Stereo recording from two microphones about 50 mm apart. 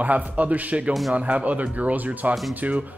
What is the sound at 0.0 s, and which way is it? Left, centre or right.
Speech, right.